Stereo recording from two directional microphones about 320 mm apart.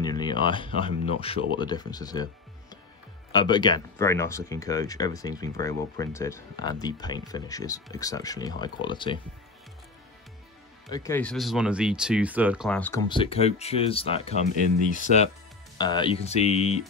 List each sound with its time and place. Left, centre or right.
0.0 s a sound: centre
0.7 s speech: centre
3.3 s speech: centre
10.9 s speech: centre